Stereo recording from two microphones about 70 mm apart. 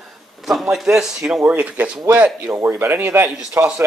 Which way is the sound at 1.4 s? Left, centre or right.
Right.